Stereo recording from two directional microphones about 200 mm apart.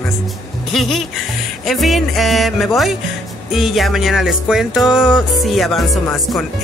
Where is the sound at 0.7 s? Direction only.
Centre (ahead or behind).